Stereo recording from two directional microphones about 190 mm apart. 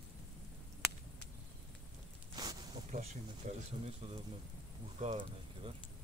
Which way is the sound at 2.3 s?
20° right (ahead or behind).